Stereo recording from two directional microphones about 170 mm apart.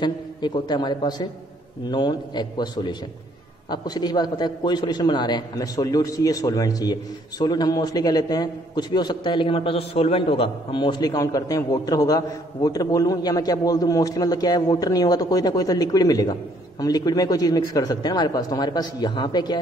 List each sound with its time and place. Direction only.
0.0 s a man's voice: 25° left (ahead or behind)